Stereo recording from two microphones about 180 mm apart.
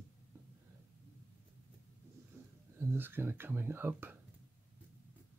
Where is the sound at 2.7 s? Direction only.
10° right (ahead or behind).